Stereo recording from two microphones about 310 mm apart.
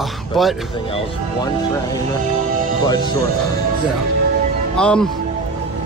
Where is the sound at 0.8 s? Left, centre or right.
Centre.